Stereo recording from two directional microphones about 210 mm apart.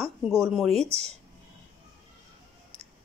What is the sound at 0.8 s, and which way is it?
Speech, 30° right (ahead or behind).